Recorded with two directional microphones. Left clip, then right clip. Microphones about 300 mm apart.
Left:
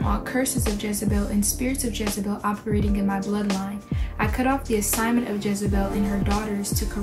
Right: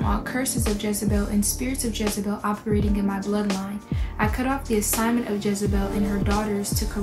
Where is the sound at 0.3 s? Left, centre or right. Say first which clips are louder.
Left 1 dB; centre.